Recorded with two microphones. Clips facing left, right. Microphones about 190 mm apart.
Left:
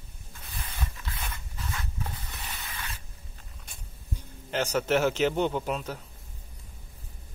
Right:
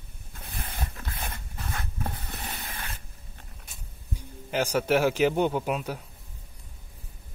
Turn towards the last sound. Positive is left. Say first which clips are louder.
# right 2 dB
turn(degrees=-10)  # may be behind; listen again after turning